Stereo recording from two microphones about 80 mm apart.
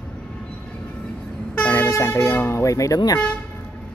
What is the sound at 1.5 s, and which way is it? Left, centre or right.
Speech, left.